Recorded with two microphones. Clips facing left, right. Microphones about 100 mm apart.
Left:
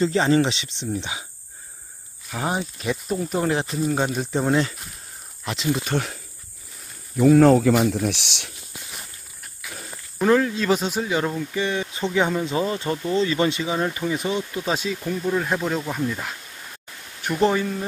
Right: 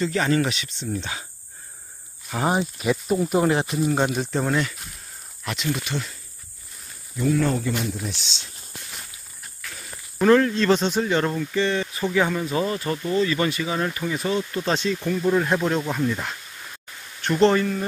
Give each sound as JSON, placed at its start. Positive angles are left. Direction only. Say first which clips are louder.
{"t": 0.0, "sound": "speech", "louder": "left 3 dB", "side_deg": 25}
{"t": 2.3, "sound": "speech", "louder": "right 3 dB", "side_deg": -5}
{"t": 4.2, "sound": "speech", "louder": "left 2 dB", "side_deg": 15}
{"t": 5.9, "sound": "speech", "louder": "left 5 dB", "side_deg": 60}
{"t": 7.2, "sound": "speech", "louder": "left 8 dB", "side_deg": 85}
{"t": 10.1, "sound": "speech", "louder": "right 2 dB", "side_deg": 5}